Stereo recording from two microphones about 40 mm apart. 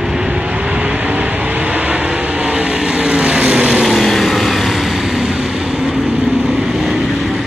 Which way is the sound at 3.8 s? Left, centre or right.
Centre.